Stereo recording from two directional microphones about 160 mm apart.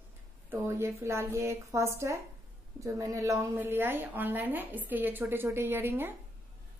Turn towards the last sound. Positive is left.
turn(degrees=-15)  # may be behind; listen again after turning